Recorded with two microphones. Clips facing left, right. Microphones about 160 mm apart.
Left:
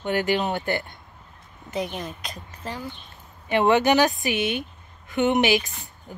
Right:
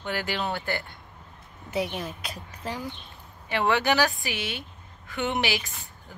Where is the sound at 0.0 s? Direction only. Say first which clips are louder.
Left 7 dB; 20° left (ahead or behind).